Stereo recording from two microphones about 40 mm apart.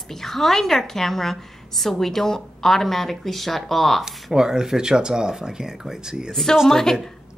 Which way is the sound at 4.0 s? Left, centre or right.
Centre.